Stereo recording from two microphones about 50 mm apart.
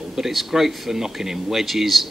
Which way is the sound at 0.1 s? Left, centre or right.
Centre.